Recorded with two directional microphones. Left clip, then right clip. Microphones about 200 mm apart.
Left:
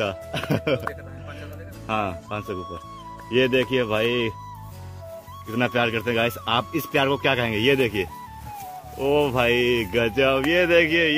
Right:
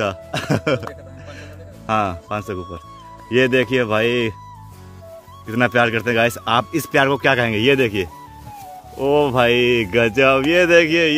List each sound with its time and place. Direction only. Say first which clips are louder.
0.0 s speech: right 4 dB; 35° right (ahead or behind)
1.9 s speech: right 6 dB; 40° right (ahead or behind)
5.5 s speech: right 6 dB; 40° right (ahead or behind)